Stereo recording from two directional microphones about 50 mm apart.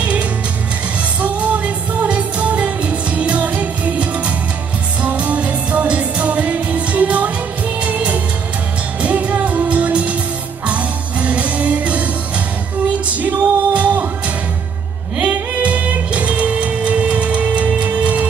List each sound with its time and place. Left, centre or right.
0.0 s music: right
13.1 s music: right